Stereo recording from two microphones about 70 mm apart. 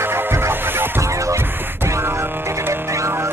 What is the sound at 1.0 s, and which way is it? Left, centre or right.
Music, right.